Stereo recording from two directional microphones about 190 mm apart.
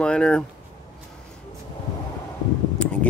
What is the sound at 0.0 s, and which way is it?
Speech, 5° left (ahead or behind).